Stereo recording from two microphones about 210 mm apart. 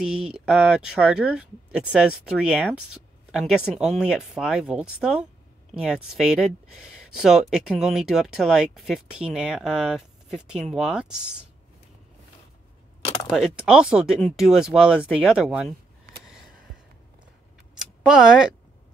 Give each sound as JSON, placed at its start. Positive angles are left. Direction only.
{"t": 0.0, "sound": "speech", "side_deg": -5}
{"t": 13.3, "sound": "speech", "side_deg": -5}
{"t": 17.7, "sound": "tick", "side_deg": 0}